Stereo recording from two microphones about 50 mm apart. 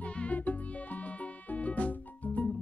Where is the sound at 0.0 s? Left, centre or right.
Left.